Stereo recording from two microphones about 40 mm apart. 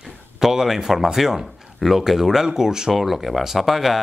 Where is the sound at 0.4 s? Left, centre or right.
Centre.